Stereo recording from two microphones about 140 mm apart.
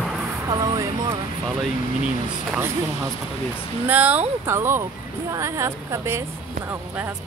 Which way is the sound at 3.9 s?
10° right (ahead or behind).